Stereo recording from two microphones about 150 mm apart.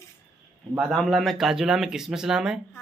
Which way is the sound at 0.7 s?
Centre (ahead or behind).